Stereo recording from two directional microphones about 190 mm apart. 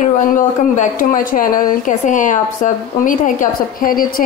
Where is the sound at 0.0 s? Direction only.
40° left (ahead or behind).